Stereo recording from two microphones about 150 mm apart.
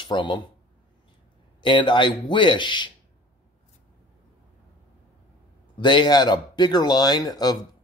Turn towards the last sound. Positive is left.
turn(degrees=25)  # may be behind; listen again after turning